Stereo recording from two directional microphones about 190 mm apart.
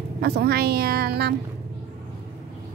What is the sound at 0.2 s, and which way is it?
A woman's voice, 55° right (ahead or behind).